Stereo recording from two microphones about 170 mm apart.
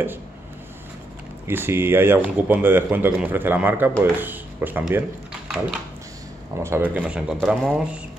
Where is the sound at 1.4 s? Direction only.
15° right (ahead or behind).